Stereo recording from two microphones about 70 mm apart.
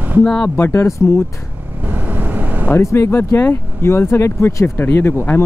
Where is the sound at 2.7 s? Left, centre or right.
Left.